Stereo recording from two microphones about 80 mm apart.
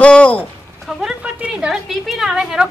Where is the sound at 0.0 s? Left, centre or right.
Centre.